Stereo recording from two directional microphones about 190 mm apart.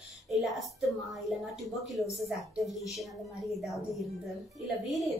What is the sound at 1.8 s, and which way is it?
A woman's voice, centre (ahead or behind).